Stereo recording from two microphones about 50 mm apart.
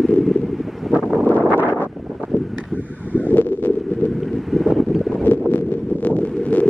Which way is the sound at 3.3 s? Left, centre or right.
Left.